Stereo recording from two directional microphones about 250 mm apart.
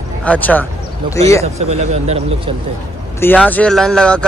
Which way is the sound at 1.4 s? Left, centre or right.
Right.